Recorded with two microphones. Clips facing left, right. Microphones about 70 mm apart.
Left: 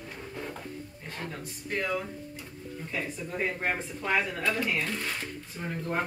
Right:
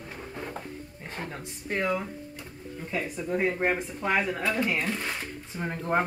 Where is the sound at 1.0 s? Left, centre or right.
Right.